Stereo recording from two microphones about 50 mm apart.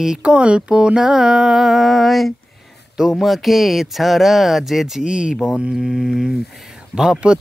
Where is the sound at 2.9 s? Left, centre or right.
Centre.